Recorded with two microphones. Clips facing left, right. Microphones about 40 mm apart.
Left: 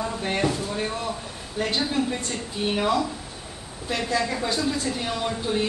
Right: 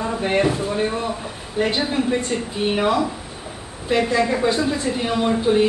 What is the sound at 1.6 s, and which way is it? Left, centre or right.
A woman's voice, centre.